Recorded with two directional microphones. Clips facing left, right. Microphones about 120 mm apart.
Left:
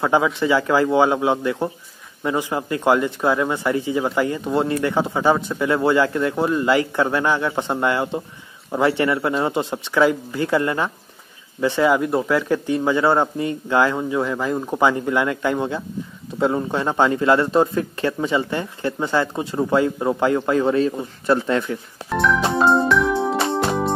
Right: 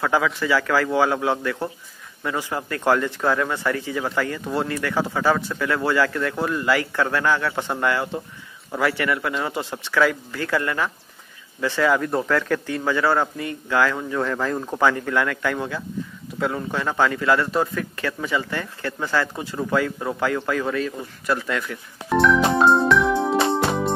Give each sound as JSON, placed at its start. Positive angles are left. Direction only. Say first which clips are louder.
{"t": 0.0, "sound": "speech", "louder": "left 3 dB", "side_deg": 25}
{"t": 22.1, "sound": "music", "louder": "right 2 dB", "side_deg": 0}